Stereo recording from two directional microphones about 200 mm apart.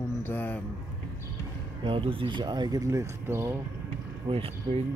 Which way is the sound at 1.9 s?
25° right (ahead or behind).